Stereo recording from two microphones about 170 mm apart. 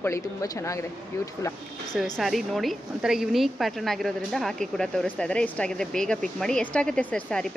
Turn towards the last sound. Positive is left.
turn(degrees=5)  # may be behind; listen again after turning